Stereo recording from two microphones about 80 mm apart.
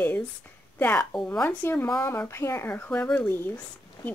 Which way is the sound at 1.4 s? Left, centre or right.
Left.